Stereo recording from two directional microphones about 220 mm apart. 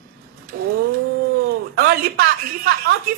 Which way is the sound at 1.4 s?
45° right (ahead or behind).